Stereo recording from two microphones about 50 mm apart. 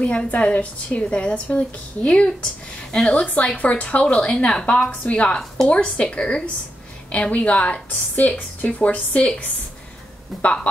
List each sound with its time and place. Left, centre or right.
0.0 s a woman's voice: left
8.5 s a woman's voice: left
10.4 s a woman's voice: left